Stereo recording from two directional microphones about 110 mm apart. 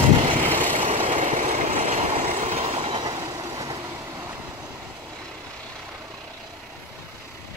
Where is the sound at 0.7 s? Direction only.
60° right (ahead or behind).